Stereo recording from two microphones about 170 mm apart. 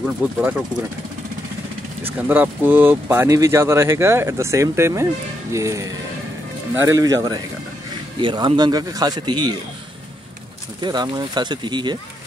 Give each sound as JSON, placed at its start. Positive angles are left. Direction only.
{"t": 0.0, "sound": "speech", "side_deg": -10}
{"t": 2.0, "sound": "a man's voice", "side_deg": -10}
{"t": 10.8, "sound": "a man's voice", "side_deg": -25}